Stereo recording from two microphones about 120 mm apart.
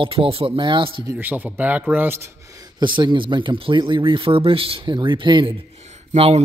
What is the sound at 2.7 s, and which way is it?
Speech, 40° right (ahead or behind).